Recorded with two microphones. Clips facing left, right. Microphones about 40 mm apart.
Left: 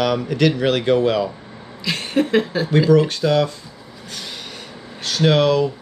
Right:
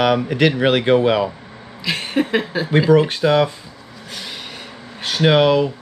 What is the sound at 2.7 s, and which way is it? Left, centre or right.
Speech, right.